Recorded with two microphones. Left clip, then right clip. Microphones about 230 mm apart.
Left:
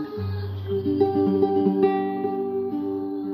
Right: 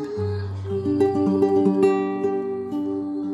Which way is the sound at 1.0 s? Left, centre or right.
Right.